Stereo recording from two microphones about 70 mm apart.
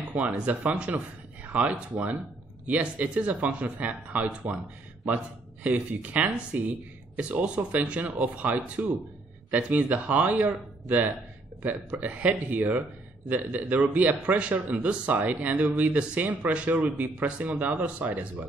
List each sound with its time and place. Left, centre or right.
0.1 s a man's voice: right